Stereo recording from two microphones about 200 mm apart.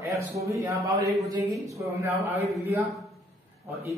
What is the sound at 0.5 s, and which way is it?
A man's voice, 15° right (ahead or behind).